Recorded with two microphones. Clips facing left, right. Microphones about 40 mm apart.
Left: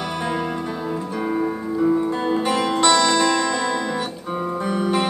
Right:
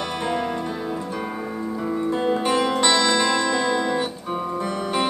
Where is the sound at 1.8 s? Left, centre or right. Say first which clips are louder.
Left 5 dB; centre.